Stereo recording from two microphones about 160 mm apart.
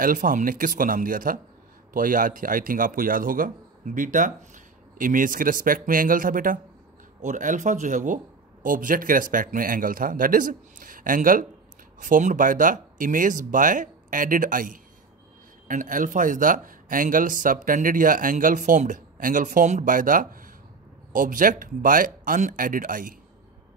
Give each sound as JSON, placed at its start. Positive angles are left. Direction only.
{"t": 0.0, "sound": "speech", "side_deg": -55}